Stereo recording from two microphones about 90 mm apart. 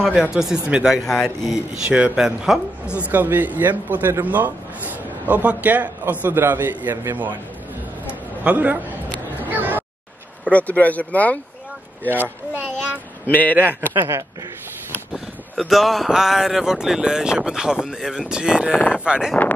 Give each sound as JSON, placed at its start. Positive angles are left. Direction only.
{"t": 0.1, "sound": "speech", "side_deg": -10}
{"t": 1.0, "sound": "speech", "side_deg": 0}
{"t": 3.0, "sound": "speech", "side_deg": -20}
{"t": 8.1, "sound": "a sound", "side_deg": -15}
{"t": 10.4, "sound": "speech", "side_deg": 15}
{"t": 12.2, "sound": "speech", "side_deg": -15}
{"t": 13.3, "sound": "speech", "side_deg": 20}
{"t": 15.1, "sound": "speech", "side_deg": 0}
{"t": 18.7, "sound": "speech", "side_deg": 20}
{"t": 19.0, "sound": "speech", "side_deg": -10}